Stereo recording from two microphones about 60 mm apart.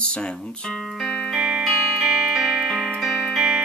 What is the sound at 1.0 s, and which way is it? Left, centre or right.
Music, centre.